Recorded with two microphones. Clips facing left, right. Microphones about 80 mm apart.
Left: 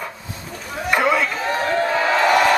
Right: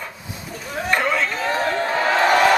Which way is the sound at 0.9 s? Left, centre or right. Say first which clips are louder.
Left 3 dB; centre.